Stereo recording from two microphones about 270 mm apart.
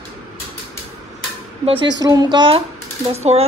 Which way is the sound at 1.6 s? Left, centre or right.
Centre.